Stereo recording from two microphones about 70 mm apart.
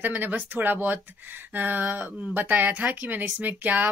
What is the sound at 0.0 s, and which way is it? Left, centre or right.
A woman's voice, right.